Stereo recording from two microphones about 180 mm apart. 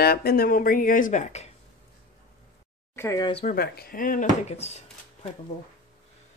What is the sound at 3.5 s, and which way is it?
Speech, 55° left (ahead or behind).